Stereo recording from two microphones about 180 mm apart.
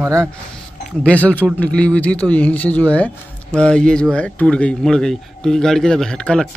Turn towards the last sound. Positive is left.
turn(degrees=5)  # may be behind; listen again after turning